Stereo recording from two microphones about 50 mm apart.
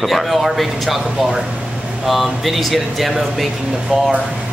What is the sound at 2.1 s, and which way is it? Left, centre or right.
A man's voice, centre.